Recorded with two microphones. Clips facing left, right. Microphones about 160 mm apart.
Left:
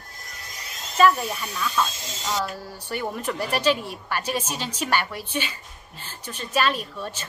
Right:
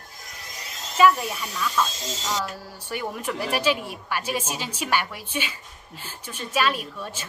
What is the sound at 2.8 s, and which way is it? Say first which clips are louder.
Speech: left 1 dB; 10° right (ahead or behind).